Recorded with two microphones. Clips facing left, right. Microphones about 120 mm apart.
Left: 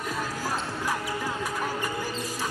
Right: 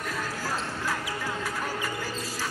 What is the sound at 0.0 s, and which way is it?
Music, 15° left (ahead or behind).